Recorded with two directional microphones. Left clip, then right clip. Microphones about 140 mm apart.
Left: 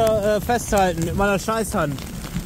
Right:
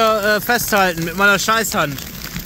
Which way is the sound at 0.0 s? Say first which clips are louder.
Right 4 dB; 5° right (ahead or behind).